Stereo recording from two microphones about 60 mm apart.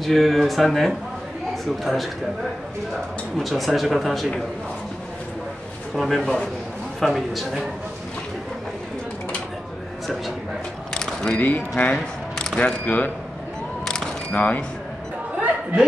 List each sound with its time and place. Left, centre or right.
0.0 s speech: centre
3.3 s speech: centre
5.9 s speech: centre
11.0 s a sound: centre
11.2 s speech: left
11.9 s a sound: centre
12.5 s speech: left
14.3 s speech: left
15.3 s a sound: centre